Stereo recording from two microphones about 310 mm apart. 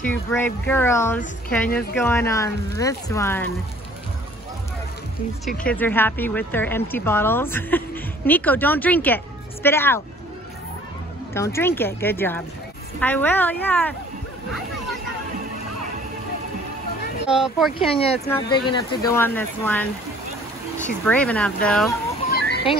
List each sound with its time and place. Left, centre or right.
0.1 s speech: centre
5.6 s speech: centre
11.3 s speech: centre
17.3 s speech: centre
17.7 s speech: centre